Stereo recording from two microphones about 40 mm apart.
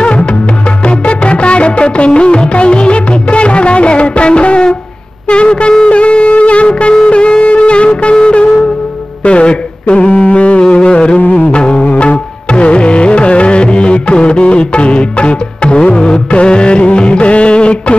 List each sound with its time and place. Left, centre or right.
0.0 s music: left
0.8 s music of bollywood: left
5.3 s shofar: left
9.2 s a sound: left
10.6 s music: left
11.1 s music: left
11.4 s music: left